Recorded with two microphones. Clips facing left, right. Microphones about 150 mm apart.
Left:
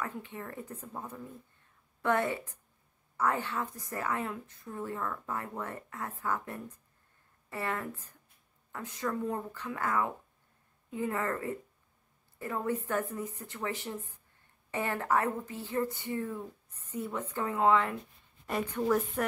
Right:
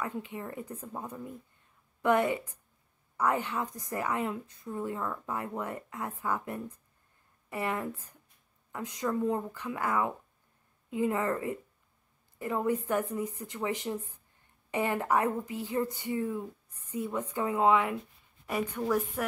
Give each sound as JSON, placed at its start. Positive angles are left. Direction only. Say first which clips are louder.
{"t": 0.0, "sound": "a woman's voice", "louder": "right 3 dB", "side_deg": -15}
{"t": 19.2, "sound": "speech", "louder": "left 1 dB", "side_deg": -5}